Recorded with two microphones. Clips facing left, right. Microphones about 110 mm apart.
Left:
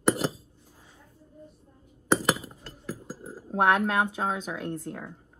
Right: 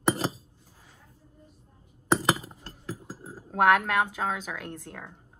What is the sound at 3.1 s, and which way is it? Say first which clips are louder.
Chink: left 2 dB; centre (ahead or behind).